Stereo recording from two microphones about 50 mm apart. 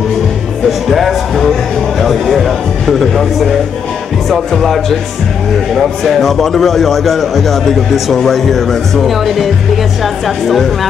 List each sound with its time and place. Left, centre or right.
0.7 s a man's voice: centre